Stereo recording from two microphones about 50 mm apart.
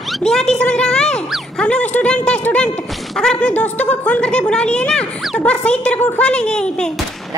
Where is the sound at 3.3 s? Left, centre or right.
Left.